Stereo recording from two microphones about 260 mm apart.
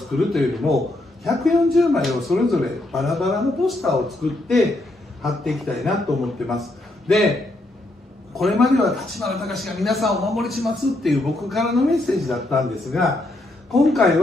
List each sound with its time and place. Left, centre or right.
0.1 s a man's voice: centre
8.4 s a man's voice: centre